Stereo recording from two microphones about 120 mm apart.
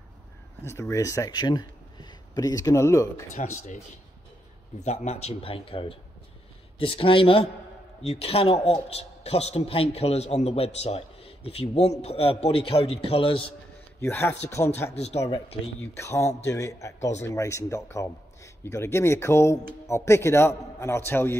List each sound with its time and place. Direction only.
0.7 s speech: 25° left (ahead or behind)
3.3 s a man's voice: 70° left (ahead or behind); by 13.5 s 50° left (ahead or behind)
14.0 s a man's voice: 20° left (ahead or behind)
16.0 s a man's voice: 25° left (ahead or behind)